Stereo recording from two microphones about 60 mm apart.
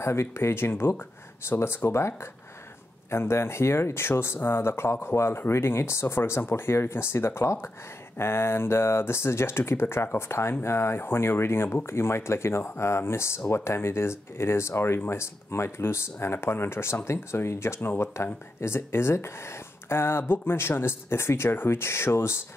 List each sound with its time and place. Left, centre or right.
0.0 s speech: left